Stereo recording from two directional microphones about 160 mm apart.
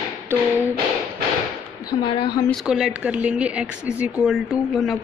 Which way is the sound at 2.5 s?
5° right (ahead or behind).